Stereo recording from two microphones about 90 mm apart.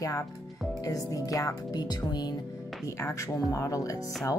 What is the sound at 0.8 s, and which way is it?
Speech, 40° left (ahead or behind).